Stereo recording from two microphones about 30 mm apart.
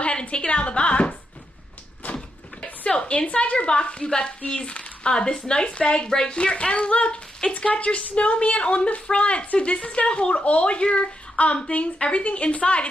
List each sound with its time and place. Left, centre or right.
0.0 s a woman's voice: left
2.0 s cupboard open or close: left
3.1 s a woman's voice: left
3.5 s a woman's voice: left